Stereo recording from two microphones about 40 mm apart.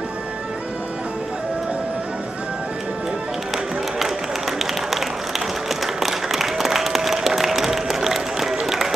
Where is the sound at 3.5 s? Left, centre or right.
Centre.